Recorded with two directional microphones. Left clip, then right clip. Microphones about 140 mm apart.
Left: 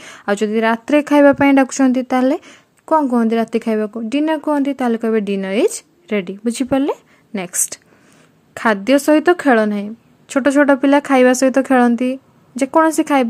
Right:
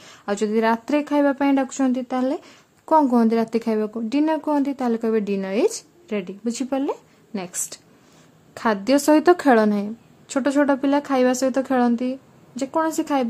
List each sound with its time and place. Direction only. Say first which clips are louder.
0.0 s speech: left 6 dB; 35° left (ahead or behind)
8.5 s speech: left 5 dB; 20° left (ahead or behind)